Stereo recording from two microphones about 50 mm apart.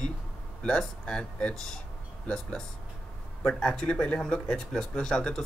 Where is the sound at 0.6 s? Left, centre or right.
Centre.